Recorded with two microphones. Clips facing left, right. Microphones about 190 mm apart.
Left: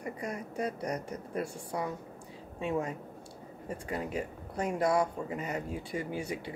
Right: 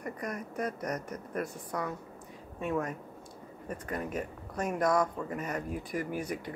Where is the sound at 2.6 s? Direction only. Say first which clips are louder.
Even; 30° left (ahead or behind).